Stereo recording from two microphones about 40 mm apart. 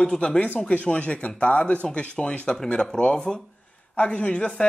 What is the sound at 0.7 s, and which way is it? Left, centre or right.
A woman's voice, left.